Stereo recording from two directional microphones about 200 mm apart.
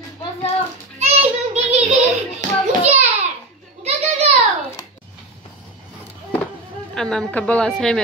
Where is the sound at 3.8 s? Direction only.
30° right (ahead or behind).